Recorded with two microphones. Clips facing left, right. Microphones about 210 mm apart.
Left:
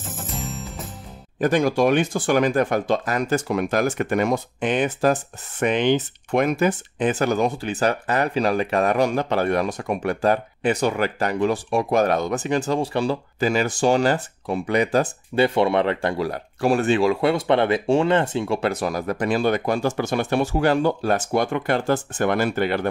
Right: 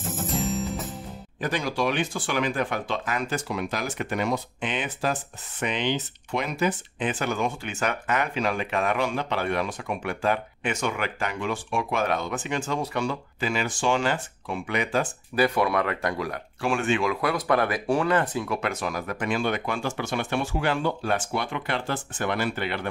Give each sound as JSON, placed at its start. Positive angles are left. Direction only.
{"t": 0.3, "sound": "music", "side_deg": 0}
{"t": 1.4, "sound": "speech", "side_deg": 50}
{"t": 15.3, "sound": "speech", "side_deg": 25}